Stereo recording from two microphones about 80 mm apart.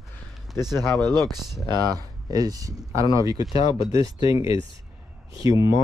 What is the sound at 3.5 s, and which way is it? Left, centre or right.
Speech, left.